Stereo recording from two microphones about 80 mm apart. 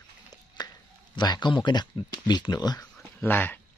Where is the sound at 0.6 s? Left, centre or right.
Left.